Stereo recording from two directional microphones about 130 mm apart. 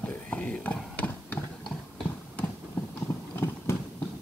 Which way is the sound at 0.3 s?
10° left (ahead or behind).